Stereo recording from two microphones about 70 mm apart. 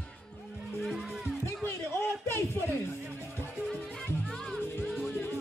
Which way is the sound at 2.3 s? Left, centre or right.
Left.